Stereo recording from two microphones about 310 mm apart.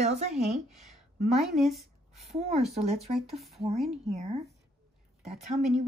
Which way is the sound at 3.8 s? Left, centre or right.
Right.